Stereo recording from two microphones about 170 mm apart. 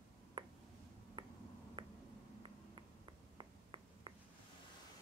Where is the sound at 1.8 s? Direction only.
25° right (ahead or behind).